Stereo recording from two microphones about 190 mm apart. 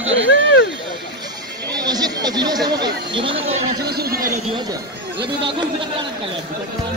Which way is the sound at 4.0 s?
50° right (ahead or behind).